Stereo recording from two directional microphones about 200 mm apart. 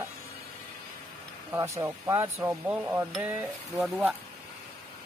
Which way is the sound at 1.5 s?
15° right (ahead or behind).